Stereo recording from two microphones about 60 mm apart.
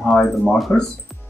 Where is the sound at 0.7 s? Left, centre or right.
Left.